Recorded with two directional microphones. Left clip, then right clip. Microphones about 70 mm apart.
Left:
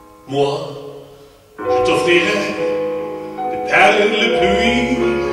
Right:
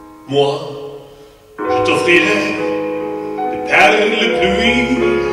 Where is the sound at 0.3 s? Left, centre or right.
Right.